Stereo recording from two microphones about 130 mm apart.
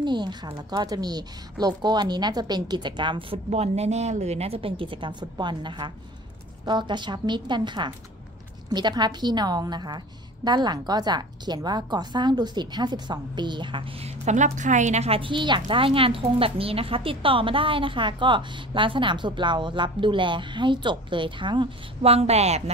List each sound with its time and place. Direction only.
0.0 s a woman's voice: 35° right (ahead or behind)
14.0 s a woman's voice: 65° right (ahead or behind); by 22.1 s 40° right (ahead or behind)
22.1 s a woman's voice: 55° right (ahead or behind)